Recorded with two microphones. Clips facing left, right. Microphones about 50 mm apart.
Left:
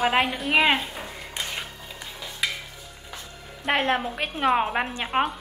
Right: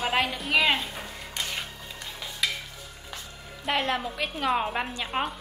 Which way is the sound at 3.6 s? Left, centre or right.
Left.